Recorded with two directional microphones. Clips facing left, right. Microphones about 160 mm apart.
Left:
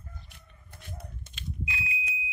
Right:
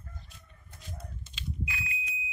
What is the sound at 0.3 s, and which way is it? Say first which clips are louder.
Chicken: left 1 dB; 60° left (ahead or behind).